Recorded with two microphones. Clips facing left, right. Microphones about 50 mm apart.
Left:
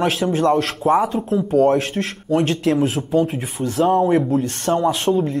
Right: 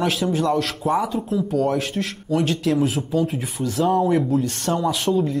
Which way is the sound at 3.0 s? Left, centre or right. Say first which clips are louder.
Left 2 dB; centre.